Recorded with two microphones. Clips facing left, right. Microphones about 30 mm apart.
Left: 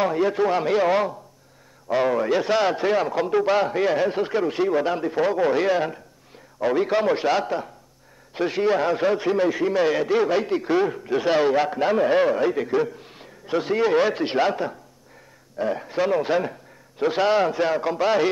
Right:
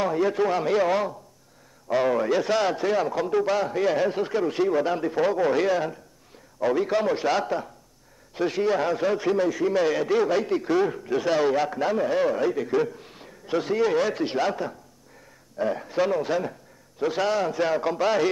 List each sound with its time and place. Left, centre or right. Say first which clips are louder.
0.0 s a man's voice: left 2 dB; centre
17.6 s speech: left 2 dB; centre